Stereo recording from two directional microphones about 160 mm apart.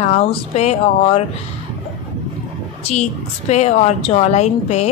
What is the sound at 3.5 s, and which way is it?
Speech, 45° left (ahead or behind).